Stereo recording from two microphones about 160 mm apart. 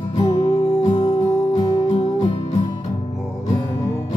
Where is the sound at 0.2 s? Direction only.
30° left (ahead or behind).